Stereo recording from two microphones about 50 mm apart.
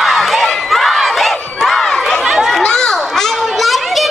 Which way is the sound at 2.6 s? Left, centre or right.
Centre.